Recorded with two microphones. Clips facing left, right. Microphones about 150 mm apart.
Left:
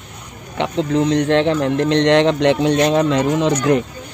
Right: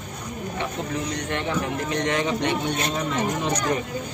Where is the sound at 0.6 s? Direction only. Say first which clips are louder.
Left 13 dB; 85° left.